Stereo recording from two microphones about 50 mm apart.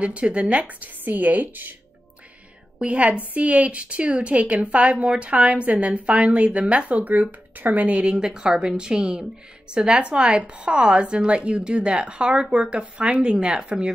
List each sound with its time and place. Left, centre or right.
0.0 s a woman's voice: right
2.8 s a woman's voice: right